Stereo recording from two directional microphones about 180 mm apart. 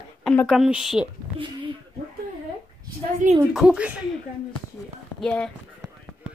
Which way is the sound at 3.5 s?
5° right (ahead or behind).